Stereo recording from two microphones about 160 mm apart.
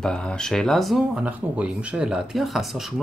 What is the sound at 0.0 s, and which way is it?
Speech, 5° left (ahead or behind).